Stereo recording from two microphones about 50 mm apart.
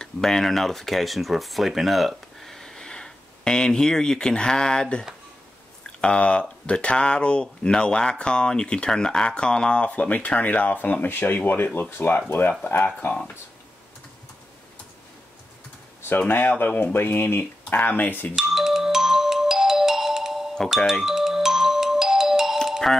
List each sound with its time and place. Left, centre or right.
0.0 s speech: centre; by 13.2 s left
16.2 s speech: left
18.3 s music: centre